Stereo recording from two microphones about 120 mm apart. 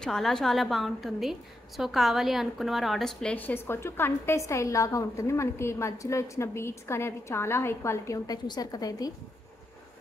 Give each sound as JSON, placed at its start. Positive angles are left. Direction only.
{"t": 0.0, "sound": "a woman's voice", "side_deg": 5}